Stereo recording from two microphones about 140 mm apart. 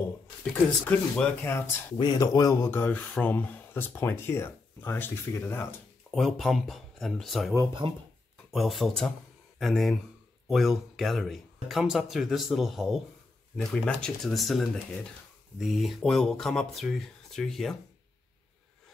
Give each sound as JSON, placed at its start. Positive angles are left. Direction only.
{"t": 0.8, "sound": "speech", "side_deg": 10}
{"t": 2.0, "sound": "speech", "side_deg": 30}
{"t": 6.1, "sound": "speech", "side_deg": 0}
{"t": 7.8, "sound": "speech", "side_deg": -40}
{"t": 8.5, "sound": "speech", "side_deg": 0}